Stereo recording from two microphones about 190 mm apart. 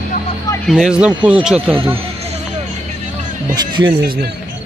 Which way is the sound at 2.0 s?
35° right (ahead or behind).